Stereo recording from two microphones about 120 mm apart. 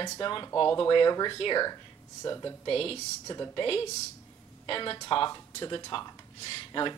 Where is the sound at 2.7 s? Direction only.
50° left (ahead or behind).